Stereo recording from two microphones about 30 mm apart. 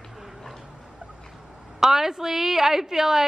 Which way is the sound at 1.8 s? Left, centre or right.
Centre.